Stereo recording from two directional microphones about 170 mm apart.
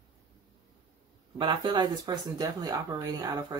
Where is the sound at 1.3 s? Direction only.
25° right (ahead or behind).